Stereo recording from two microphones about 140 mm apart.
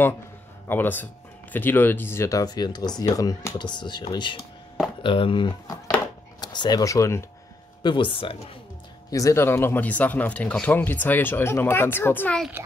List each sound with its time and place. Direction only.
0.7 s speech: 15° left (ahead or behind)
7.8 s speech: 35° left (ahead or behind)
9.1 s speech: 20° left (ahead or behind)